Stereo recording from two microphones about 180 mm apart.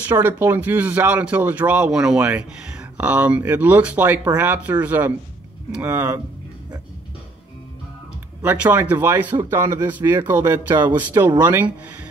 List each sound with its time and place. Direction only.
0.0 s speech: 10° right (ahead or behind)
8.4 s speech: 10° right (ahead or behind)